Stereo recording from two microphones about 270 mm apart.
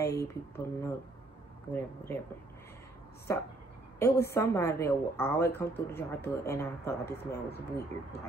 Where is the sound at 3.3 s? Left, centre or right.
Centre.